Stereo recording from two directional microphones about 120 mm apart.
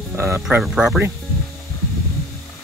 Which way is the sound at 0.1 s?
20° right (ahead or behind).